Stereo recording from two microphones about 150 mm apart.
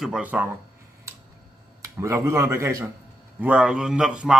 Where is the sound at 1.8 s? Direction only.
20° right (ahead or behind).